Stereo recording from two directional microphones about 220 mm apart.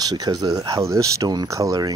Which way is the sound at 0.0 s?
20° right (ahead or behind).